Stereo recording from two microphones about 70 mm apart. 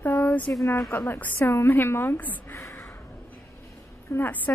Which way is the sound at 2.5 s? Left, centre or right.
Left.